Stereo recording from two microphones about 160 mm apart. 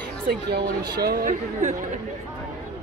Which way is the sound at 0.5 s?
80° right.